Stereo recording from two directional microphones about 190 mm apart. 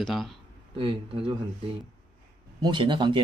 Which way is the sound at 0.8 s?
30° right (ahead or behind).